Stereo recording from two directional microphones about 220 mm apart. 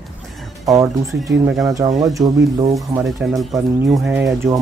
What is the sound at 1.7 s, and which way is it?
Speech, 15° right (ahead or behind).